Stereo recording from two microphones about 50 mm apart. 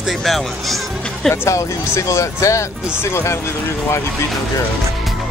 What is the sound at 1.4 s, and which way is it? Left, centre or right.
Speech, left.